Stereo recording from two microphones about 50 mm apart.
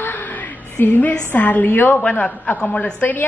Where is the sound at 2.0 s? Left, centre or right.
Left.